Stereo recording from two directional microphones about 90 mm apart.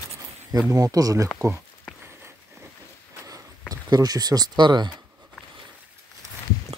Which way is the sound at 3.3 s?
45° right (ahead or behind).